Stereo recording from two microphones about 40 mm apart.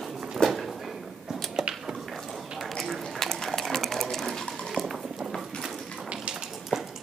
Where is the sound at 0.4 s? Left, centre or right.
Left.